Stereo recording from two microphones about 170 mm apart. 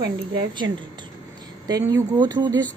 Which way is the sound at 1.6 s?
20° right (ahead or behind).